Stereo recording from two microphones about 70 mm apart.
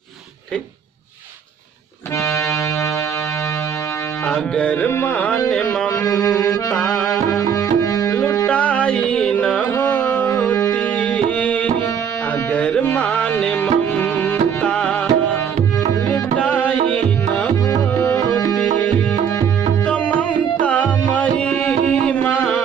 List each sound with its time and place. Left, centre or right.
4.3 s music: centre
5.0 s carnatic music: left
5.5 s music: centre
7.5 s music: left
8.5 s carnatic music: centre
10.7 s music: centre
18.5 s music: centre
19.9 s music: centre